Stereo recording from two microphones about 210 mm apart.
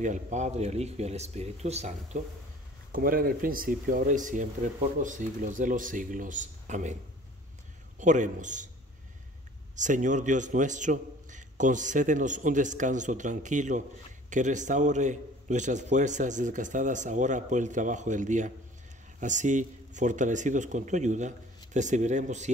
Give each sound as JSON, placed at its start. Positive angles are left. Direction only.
{"t": 0.0, "sound": "a man's voice", "side_deg": -35}
{"t": 8.0, "sound": "a man's voice", "side_deg": -35}
{"t": 9.8, "sound": "a man's voice", "side_deg": -35}